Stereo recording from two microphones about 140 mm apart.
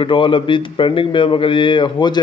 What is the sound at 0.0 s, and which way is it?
A man's voice, 35° left (ahead or behind).